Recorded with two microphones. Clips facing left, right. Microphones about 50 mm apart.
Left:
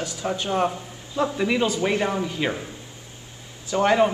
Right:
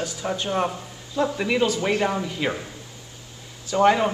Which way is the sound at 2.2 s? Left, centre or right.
Centre.